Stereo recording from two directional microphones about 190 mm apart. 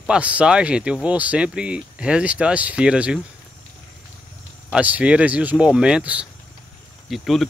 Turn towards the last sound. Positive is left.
turn(degrees=0)  # may be behind; listen again after turning